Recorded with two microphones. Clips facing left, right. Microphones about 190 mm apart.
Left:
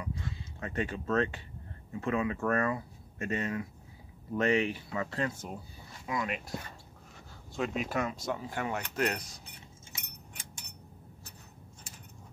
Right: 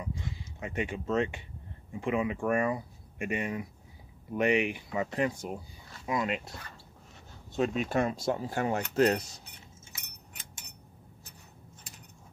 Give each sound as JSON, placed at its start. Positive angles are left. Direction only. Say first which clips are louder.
{"t": 0.0, "sound": "speech", "louder": "right 1 dB", "side_deg": -20}
{"t": 7.6, "sound": "speech", "louder": "right 4 dB", "side_deg": -25}